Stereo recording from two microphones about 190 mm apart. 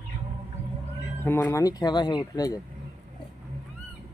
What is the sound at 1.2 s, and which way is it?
Speech, 10° left (ahead or behind).